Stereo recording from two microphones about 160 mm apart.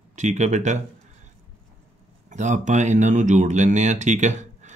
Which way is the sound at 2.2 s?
50° right (ahead or behind).